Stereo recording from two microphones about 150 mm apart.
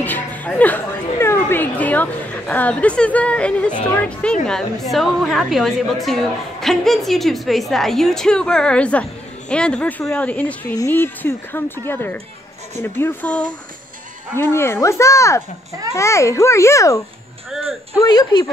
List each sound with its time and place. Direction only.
0.0 s music: 10° left (ahead or behind)
1.2 s a woman's voice: 15° left (ahead or behind)
17.5 s a woman's voice: centre (ahead or behind)
17.9 s speech: 25° left (ahead or behind)